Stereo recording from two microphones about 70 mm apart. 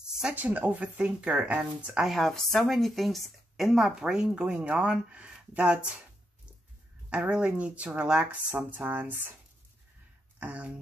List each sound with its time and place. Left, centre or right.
0.3 s speech: right
2.0 s speech: centre
7.1 s speech: centre
10.4 s speech: centre